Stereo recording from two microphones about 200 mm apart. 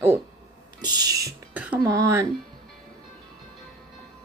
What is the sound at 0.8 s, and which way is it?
Speech, 20° right (ahead or behind).